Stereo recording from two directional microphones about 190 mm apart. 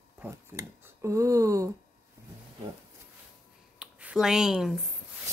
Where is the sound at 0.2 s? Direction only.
15° right (ahead or behind).